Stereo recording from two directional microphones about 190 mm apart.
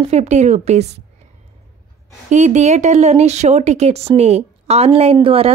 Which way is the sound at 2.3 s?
40° right (ahead or behind).